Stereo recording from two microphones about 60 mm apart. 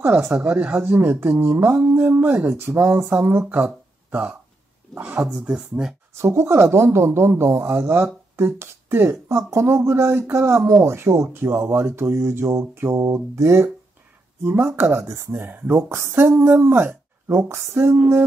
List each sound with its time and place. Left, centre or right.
0.3 s speech: right
0.8 s speech: right
2.5 s speech: right
4.1 s speech: right
5.2 s speech: centre
6.1 s speech: right
12.9 s music: right
14.4 s speech: right